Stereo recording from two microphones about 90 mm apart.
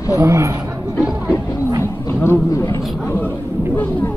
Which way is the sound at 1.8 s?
30° left (ahead or behind).